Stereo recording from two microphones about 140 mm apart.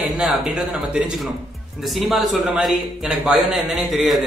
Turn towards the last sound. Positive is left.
turn(degrees=0)  # may be behind; listen again after turning